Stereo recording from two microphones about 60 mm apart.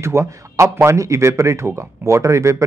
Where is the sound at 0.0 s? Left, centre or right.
Right.